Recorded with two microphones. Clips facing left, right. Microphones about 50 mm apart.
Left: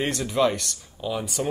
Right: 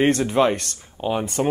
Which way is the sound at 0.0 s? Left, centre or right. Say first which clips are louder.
Right 5 dB; right.